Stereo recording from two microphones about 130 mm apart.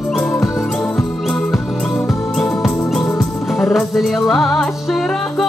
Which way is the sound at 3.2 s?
Centre (ahead or behind).